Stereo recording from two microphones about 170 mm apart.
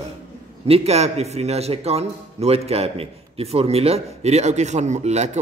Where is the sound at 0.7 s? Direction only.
35° right (ahead or behind).